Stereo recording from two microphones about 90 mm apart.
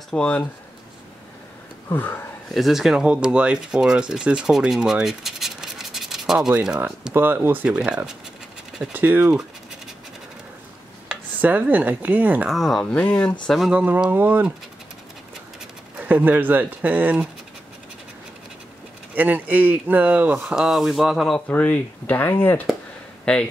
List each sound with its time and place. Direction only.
0.1 s speech: 10° left (ahead or behind)
1.9 s speech: 20° left (ahead or behind)
2.5 s speech: centre (ahead or behind)
7.2 s speech: 20° right (ahead or behind)
8.9 s speech: 20° right (ahead or behind)
11.4 s speech: 20° right (ahead or behind)
12.4 s speech: centre (ahead or behind)
12.9 s speech: 15° left (ahead or behind)
13.6 s speech: 10° right (ahead or behind)
16.0 s speech: 20° right (ahead or behind)
19.1 s speech: 20° right (ahead or behind)
20.4 s speech: 5° right (ahead or behind)
21.5 s speech: 15° left (ahead or behind)